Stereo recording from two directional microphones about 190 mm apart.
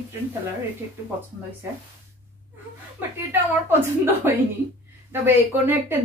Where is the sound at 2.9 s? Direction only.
10° right (ahead or behind).